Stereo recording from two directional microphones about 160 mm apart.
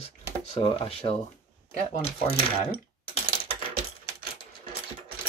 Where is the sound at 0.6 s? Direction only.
35° left (ahead or behind).